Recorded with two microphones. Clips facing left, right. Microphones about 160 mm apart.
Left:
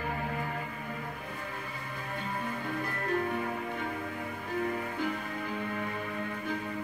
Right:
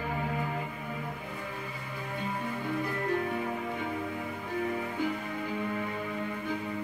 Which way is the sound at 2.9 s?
15° right (ahead or behind).